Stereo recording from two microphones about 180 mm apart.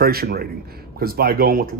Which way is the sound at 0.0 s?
60° right (ahead or behind).